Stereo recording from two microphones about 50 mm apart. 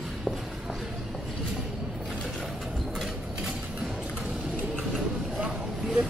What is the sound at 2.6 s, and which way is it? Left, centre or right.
Mechanisms, centre.